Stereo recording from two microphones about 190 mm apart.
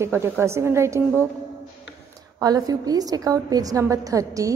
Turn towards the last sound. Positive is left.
turn(degrees=-15)  # may be behind; listen again after turning